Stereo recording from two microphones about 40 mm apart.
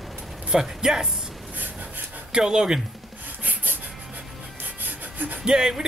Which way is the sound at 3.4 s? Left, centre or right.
Right.